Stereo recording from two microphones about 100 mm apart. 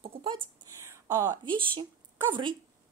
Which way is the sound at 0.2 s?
55° right (ahead or behind).